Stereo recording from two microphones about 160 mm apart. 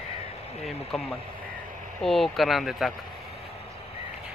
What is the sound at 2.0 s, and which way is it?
Speech, centre (ahead or behind).